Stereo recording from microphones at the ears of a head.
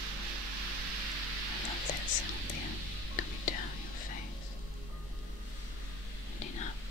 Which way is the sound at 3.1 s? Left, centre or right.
Left.